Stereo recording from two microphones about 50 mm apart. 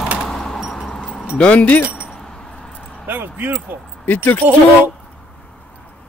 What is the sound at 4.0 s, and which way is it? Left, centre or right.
Speech, left.